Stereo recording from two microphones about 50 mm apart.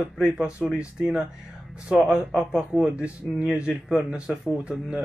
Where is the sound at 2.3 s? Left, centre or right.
Centre.